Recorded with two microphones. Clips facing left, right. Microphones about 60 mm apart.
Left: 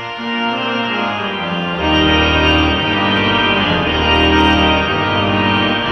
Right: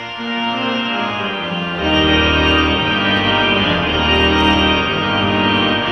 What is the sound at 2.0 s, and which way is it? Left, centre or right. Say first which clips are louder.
Organ: even; left.